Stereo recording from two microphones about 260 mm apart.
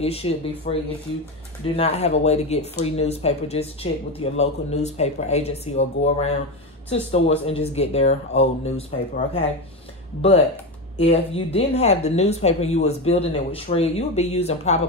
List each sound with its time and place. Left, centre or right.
0.0 s speech: left
1.8 s speech: left
11.0 s speech: left